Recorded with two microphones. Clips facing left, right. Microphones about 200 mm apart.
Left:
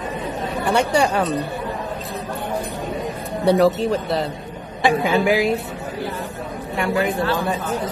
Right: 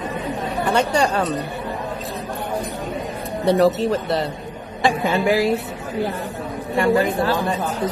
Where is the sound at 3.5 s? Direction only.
Centre (ahead or behind).